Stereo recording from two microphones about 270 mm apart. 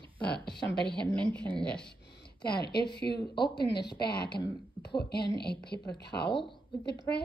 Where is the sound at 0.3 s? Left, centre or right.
Left.